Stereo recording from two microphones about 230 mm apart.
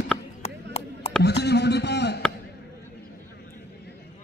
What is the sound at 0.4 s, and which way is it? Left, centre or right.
Chop, left.